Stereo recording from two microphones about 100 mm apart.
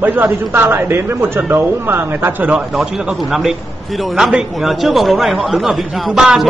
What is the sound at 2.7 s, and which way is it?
A man's voice, 5° right (ahead or behind).